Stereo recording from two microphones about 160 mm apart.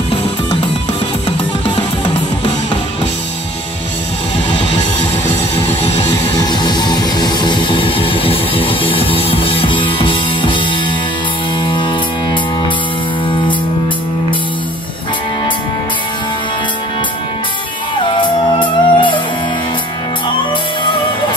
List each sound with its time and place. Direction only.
6.4 s music: 25° left (ahead or behind)
11.6 s music: 30° left (ahead or behind)
18.1 s music: 30° left (ahead or behind)